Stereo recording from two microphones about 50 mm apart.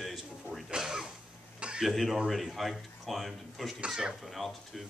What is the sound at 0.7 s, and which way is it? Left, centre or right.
Cutlery, centre.